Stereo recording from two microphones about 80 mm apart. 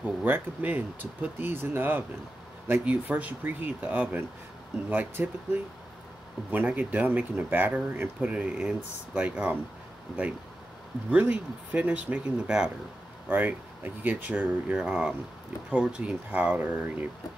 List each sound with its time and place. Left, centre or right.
0.0 s speech: centre
13.3 s speech: right
16.3 s speech: right